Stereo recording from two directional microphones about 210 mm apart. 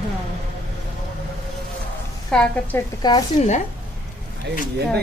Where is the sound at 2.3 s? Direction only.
5° left (ahead or behind).